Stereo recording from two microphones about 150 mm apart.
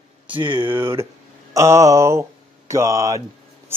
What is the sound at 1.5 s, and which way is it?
Speech, 20° right (ahead or behind).